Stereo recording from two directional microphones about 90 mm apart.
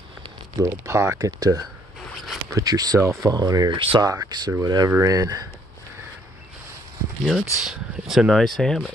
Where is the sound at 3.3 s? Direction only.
45° right (ahead or behind).